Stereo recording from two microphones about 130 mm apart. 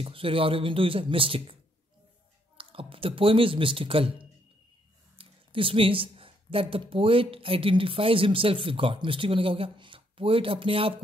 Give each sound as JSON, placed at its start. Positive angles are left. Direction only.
{"t": 0.0, "sound": "speech", "side_deg": -45}
{"t": 5.1, "sound": "speech", "side_deg": -45}